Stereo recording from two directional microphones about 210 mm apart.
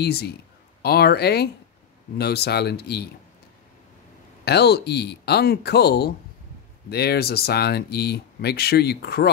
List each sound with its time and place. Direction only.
0.0 s speech: 50° left (ahead or behind)
4.5 s speech: 50° left (ahead or behind)